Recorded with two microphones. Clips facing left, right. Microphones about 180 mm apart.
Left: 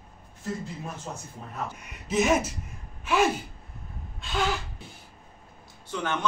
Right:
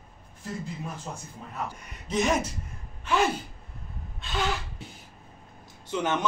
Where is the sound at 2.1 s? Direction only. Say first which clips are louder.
Left 2 dB; 5° left (ahead or behind).